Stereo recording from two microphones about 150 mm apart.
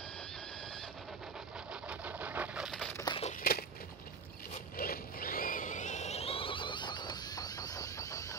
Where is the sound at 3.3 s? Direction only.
75° left (ahead or behind).